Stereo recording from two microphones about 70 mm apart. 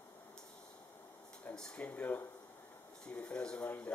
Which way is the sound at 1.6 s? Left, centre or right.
Centre.